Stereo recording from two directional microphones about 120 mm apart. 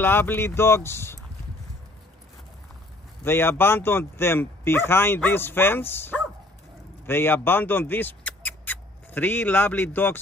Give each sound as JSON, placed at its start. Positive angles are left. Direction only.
{"t": 0.0, "sound": "speech", "side_deg": 15}
{"t": 3.3, "sound": "speech", "side_deg": 20}